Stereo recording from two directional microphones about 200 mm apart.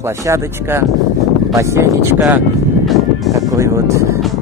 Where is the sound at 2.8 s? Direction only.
Centre (ahead or behind).